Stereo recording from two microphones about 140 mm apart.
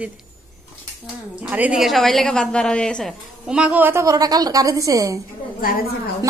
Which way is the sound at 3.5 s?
10° right (ahead or behind).